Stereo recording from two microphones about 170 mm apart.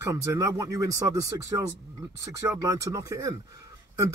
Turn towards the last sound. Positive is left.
turn(degrees=-20)  # may be behind; listen again after turning